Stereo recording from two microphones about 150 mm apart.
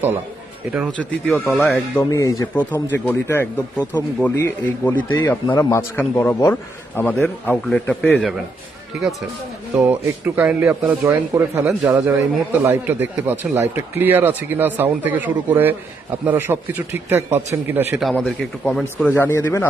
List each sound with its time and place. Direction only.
0.9 s a man's voice: 10° left (ahead or behind)
2.0 s a man's voice: 25° left (ahead or behind); by 8.4 s 5° left (ahead or behind)
9.8 s a man's voice: 10° right (ahead or behind)
17.9 s a man's voice: centre (ahead or behind)
19.1 s a man's voice: 15° left (ahead or behind)